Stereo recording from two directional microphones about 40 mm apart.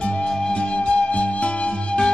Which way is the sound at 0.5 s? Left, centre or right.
Left.